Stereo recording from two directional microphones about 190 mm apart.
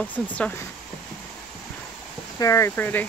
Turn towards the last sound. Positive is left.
turn(degrees=10)  # may be behind; listen again after turning